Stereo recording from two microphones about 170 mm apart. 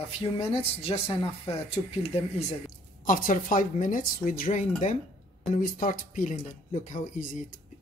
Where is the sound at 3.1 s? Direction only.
50° left (ahead or behind).